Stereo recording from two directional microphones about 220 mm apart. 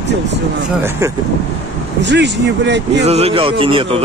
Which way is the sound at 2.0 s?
50° right (ahead or behind).